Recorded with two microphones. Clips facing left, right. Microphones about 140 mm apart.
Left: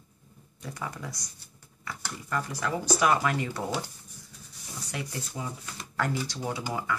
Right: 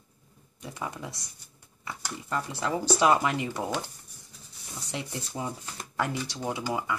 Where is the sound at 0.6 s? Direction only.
20° right (ahead or behind).